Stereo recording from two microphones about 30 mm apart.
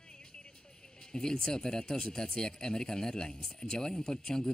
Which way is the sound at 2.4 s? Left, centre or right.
Left.